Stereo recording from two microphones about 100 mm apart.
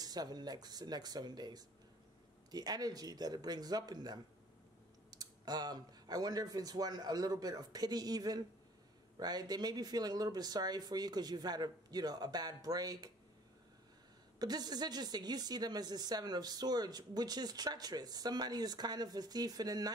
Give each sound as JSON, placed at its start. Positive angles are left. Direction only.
{"t": 0.0, "sound": "a woman's voice", "side_deg": -40}
{"t": 14.4, "sound": "a woman's voice", "side_deg": -45}